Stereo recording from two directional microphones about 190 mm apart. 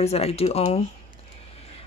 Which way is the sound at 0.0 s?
35° left (ahead or behind).